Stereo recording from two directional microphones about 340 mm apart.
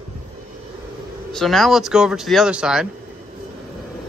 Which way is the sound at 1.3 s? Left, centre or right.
Centre.